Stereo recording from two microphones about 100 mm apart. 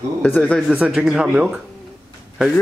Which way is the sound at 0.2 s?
15° left (ahead or behind).